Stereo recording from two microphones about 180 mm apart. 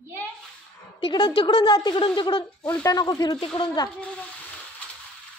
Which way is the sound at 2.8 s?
20° left (ahead or behind).